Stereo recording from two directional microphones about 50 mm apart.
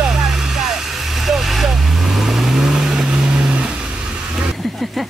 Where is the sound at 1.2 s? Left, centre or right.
Centre.